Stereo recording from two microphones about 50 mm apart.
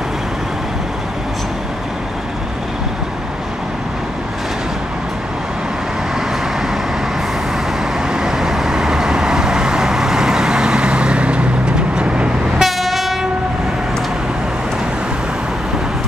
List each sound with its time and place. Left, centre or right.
8.1 s vehicle: centre
12.5 s train: centre